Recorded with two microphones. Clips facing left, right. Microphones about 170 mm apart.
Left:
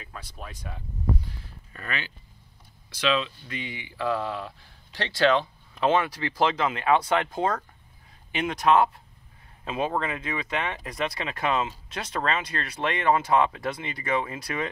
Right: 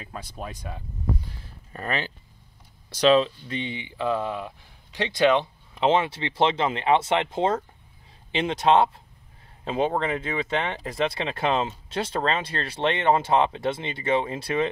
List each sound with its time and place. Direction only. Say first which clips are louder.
0.4 s speech: right 4 dB; 20° right (ahead or behind)
1.7 s speech: right 6 dB; 35° right (ahead or behind)